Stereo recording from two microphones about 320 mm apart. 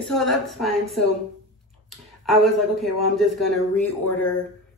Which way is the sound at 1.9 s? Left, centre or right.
Centre.